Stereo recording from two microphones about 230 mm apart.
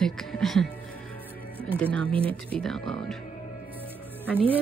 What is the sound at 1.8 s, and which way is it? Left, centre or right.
Speech, centre.